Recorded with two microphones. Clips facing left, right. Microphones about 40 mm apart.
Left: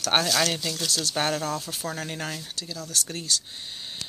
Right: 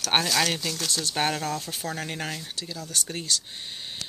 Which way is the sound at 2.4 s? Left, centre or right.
Right.